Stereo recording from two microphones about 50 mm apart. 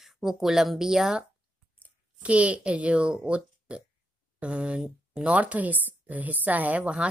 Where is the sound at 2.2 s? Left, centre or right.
Right.